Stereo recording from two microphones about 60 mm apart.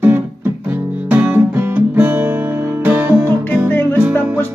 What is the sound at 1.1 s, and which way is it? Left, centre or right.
Music, right.